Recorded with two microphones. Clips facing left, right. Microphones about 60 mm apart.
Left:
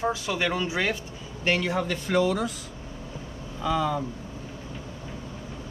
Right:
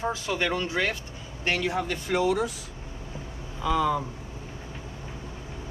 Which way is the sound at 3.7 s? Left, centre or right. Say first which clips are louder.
Right 1 dB; right.